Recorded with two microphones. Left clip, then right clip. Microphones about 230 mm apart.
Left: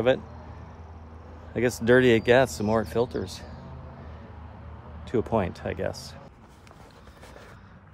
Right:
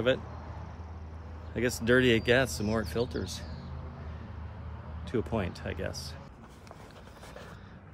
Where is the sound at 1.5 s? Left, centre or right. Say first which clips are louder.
Left 6 dB; left.